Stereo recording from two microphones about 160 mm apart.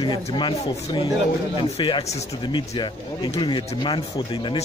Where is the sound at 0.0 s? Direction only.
30° left (ahead or behind).